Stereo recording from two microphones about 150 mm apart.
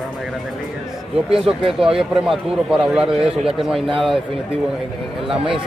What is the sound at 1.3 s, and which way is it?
Speech, 35° right (ahead or behind).